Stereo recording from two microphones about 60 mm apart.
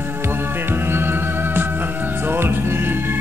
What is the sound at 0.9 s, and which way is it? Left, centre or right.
Music, right.